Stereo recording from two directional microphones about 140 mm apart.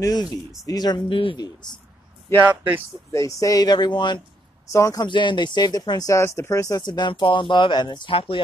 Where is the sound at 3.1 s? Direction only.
25° left (ahead or behind).